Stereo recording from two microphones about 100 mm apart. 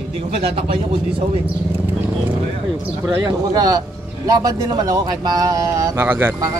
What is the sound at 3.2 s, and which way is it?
Speech, 40° right (ahead or behind).